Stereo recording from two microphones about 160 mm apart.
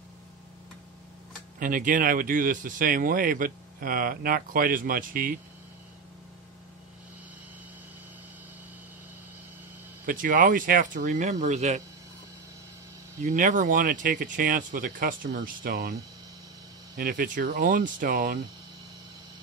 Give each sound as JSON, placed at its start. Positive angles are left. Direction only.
{"t": 1.6, "sound": "speech", "side_deg": -55}
{"t": 10.0, "sound": "a man's voice", "side_deg": -60}
{"t": 13.2, "sound": "speech", "side_deg": -50}